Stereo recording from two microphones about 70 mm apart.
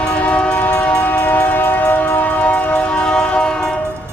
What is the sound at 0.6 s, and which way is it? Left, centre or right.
Train, left.